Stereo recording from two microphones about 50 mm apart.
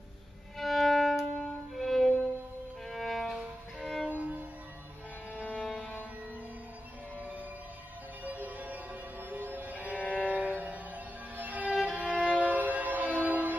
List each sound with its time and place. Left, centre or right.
0.6 s violin: centre
2.9 s music: centre
4.1 s music: right
5.3 s music: left
8.2 s music: right
9.8 s music: left
10.3 s train: right
11.3 s violin: right